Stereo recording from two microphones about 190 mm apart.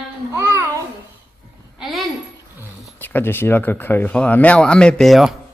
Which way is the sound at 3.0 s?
10° left (ahead or behind).